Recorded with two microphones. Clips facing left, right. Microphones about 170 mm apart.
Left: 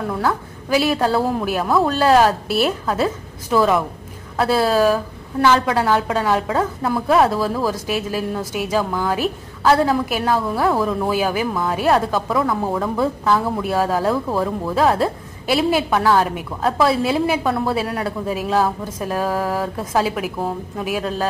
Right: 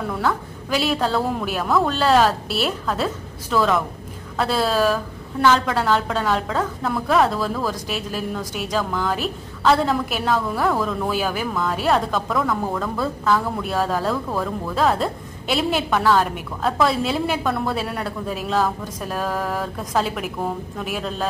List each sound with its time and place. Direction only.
0.7 s a woman's voice: 5° left (ahead or behind)
12.8 s a woman's voice: 15° left (ahead or behind)